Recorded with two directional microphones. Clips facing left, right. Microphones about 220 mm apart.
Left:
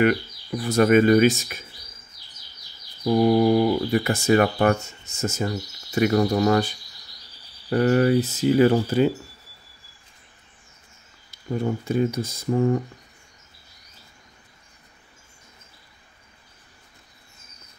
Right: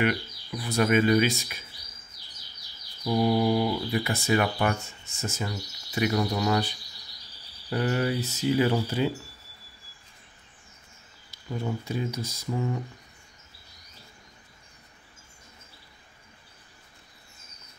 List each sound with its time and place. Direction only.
0.0 s speech: 45° left (ahead or behind)
3.3 s speech: 50° left (ahead or behind)
7.7 s speech: 50° left (ahead or behind)
11.8 s speech: 55° left (ahead or behind)